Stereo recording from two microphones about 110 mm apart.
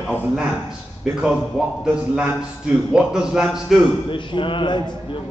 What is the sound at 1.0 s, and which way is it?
A man's voice, 5° right (ahead or behind).